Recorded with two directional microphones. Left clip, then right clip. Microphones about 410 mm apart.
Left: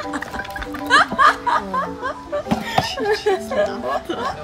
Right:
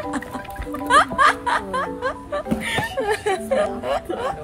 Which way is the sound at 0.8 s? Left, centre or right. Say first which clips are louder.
Left 1 dB; centre.